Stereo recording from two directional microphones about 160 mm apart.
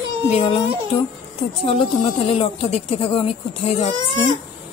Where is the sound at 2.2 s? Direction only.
35° left (ahead or behind).